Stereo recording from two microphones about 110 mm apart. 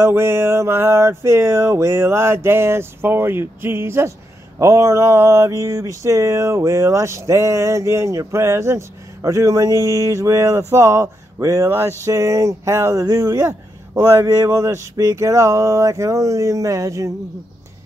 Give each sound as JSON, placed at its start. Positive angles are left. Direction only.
{"t": 0.0, "sound": "mantra", "side_deg": -25}